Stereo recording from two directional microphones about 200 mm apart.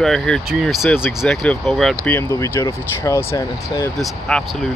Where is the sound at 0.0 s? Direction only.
Centre (ahead or behind).